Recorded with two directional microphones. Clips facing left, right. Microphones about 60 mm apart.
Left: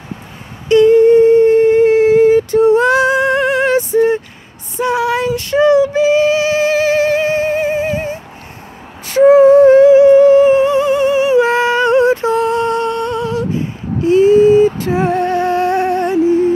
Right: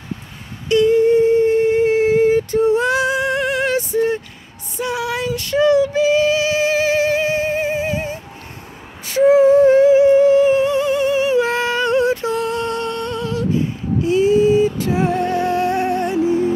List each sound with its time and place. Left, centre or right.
0.8 s humming: left
4.7 s female singing: left
6.6 s music: left
9.0 s a sound: left
10.3 s humming: left
14.0 s music: left